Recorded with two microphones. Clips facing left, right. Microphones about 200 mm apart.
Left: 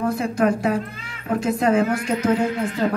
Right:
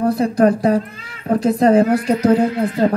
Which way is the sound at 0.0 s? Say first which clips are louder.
Right 6 dB; 35° right (ahead or behind).